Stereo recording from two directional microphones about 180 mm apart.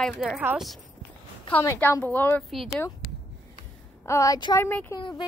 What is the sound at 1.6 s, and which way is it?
Speech, 15° left (ahead or behind).